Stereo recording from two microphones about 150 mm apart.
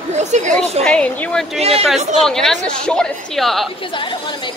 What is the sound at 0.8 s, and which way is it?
Speech, 10° left (ahead or behind).